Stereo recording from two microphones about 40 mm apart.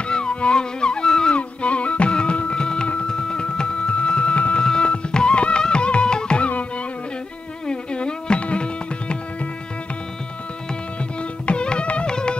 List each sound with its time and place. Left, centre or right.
0.1 s music: left
1.3 s music: left
7.6 s music: left
11.4 s music: left